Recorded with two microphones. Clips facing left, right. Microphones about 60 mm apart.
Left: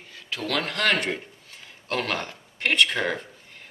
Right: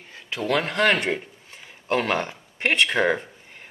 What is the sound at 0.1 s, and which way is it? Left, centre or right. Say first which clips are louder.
Speech: right 4 dB; right.